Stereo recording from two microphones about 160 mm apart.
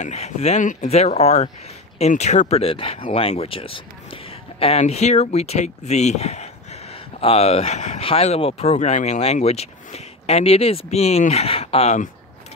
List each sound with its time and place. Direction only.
0.0 s speech: 45° left (ahead or behind)